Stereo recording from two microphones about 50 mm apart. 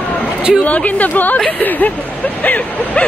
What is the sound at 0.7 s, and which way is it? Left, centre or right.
Speech, left.